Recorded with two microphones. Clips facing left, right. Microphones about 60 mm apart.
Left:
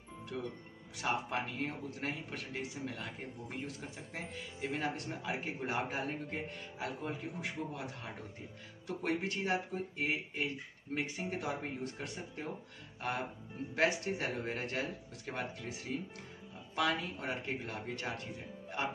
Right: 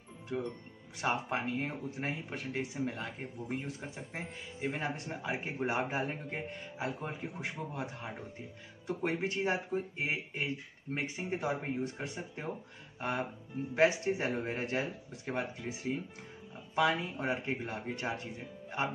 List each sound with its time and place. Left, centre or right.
1.0 s speech: right
13.7 s speech: right